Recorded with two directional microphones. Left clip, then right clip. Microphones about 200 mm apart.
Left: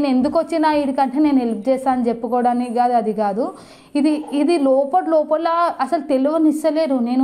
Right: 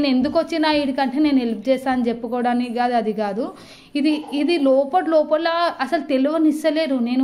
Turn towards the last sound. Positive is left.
turn(degrees=5)  # may be behind; listen again after turning